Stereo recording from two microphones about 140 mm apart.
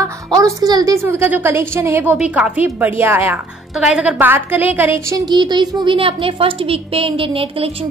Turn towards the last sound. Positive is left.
turn(degrees=-40)  # may be behind; listen again after turning